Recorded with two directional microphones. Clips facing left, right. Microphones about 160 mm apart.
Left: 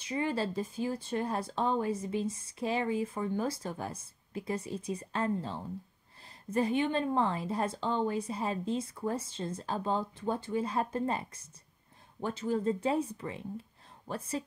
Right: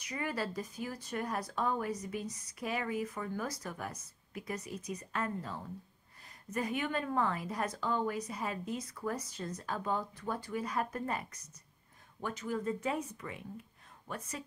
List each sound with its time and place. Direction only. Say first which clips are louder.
0.0 s speech: left 5 dB; 25° left (ahead or behind)